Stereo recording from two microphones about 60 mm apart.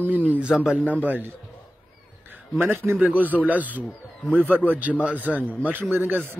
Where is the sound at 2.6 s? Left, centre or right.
Right.